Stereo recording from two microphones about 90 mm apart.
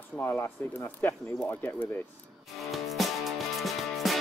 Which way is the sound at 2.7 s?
Centre (ahead or behind).